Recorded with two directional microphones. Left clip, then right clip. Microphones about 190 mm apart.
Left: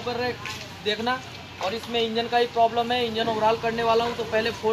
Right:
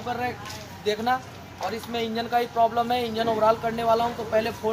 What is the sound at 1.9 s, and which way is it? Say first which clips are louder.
Speech: left 2 dB; 25° right (ahead or behind).